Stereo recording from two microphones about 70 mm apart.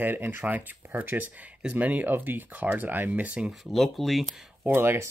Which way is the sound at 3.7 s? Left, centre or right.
Centre.